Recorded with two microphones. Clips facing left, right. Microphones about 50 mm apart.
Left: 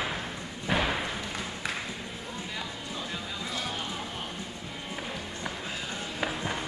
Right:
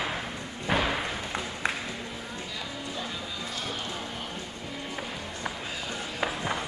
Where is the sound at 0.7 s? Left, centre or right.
Centre.